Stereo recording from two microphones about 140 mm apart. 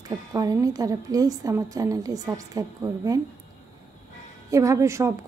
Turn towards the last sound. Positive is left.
turn(degrees=-20)  # may be behind; listen again after turning